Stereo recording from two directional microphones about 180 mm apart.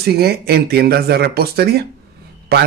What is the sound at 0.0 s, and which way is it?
Speech, 60° right (ahead or behind).